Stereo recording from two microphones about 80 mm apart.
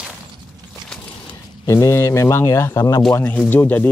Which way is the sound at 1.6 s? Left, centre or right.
Left.